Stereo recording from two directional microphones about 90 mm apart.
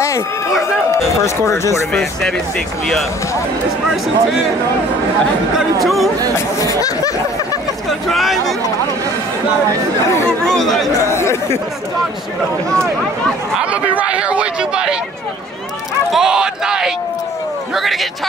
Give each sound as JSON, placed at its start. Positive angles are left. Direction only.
{"t": 1.2, "sound": "speech", "side_deg": 30}
{"t": 1.9, "sound": "speech", "side_deg": 5}
{"t": 3.8, "sound": "speech", "side_deg": 0}
{"t": 5.6, "sound": "speech", "side_deg": 0}
{"t": 6.3, "sound": "speech", "side_deg": 40}
{"t": 8.1, "sound": "speech", "side_deg": 0}
{"t": 10.4, "sound": "speech", "side_deg": 5}
{"t": 11.1, "sound": "speech", "side_deg": 30}
{"t": 13.6, "sound": "speech", "side_deg": -15}
{"t": 16.1, "sound": "speech", "side_deg": -5}